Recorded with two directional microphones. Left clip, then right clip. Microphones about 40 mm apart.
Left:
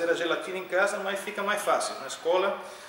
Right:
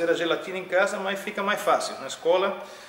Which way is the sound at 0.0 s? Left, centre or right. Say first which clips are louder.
Right 3 dB; right.